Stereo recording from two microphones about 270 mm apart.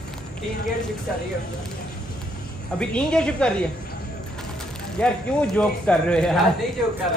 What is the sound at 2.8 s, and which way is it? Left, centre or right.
Speech, centre.